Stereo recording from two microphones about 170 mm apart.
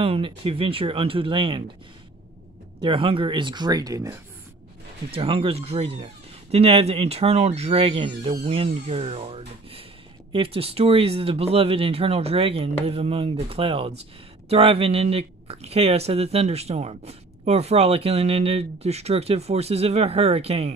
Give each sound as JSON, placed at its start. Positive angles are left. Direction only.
{"t": 0.0, "sound": "speech", "side_deg": -35}
{"t": 2.8, "sound": "speech", "side_deg": -30}
{"t": 5.1, "sound": "speech", "side_deg": -35}